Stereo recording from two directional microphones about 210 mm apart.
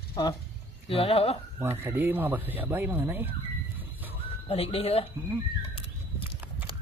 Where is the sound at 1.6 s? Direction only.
10° right (ahead or behind).